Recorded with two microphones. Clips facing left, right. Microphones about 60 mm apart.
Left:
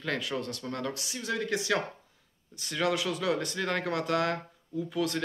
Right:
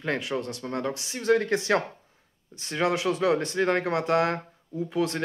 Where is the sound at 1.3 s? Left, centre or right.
Right.